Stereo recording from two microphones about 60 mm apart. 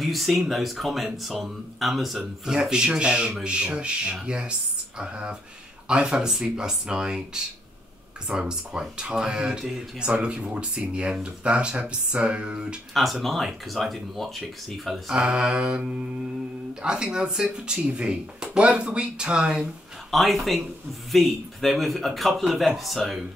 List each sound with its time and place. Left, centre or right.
0.0 s speech: centre
12.1 s a sound: centre
12.9 s speech: centre
14.9 s speech: centre
19.6 s speech: centre